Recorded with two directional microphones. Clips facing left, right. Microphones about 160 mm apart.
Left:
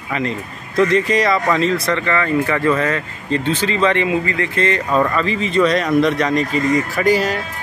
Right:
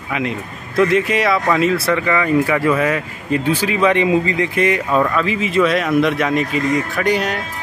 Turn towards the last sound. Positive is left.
turn(degrees=0)  # may be behind; listen again after turning